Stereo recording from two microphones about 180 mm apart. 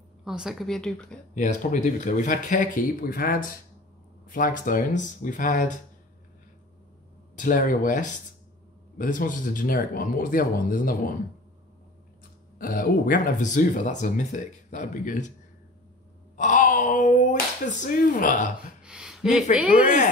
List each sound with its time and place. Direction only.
0.2 s a woman's voice: 5° right (ahead or behind)
1.3 s speech: 45° left (ahead or behind)
7.3 s speech: 45° left (ahead or behind)
12.5 s speech: 50° left (ahead or behind)
16.3 s speech: 45° left (ahead or behind)
18.8 s a sound: 5° right (ahead or behind)
19.5 s speech: 5° right (ahead or behind)
19.8 s speech: 45° left (ahead or behind)